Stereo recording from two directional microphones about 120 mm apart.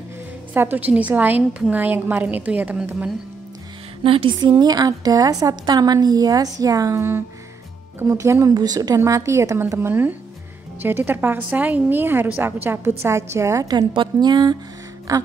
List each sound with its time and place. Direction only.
0.6 s a woman's voice: 15° right (ahead or behind)
4.0 s a woman's voice: 50° right (ahead or behind); by 15.2 s 25° right (ahead or behind)